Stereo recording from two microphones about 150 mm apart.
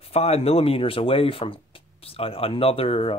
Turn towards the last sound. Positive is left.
turn(degrees=40)  # may be behind; listen again after turning